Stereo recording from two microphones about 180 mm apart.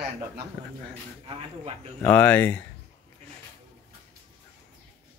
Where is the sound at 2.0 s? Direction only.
10° left (ahead or behind).